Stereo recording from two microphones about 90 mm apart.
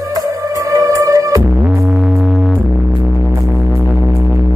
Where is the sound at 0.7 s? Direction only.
40° right (ahead or behind).